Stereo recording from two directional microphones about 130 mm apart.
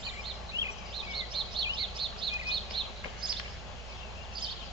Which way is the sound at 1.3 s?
40° right (ahead or behind).